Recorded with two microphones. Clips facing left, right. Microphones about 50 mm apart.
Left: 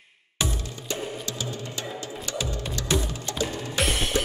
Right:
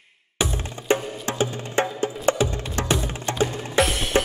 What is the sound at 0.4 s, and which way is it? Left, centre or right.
Music, right.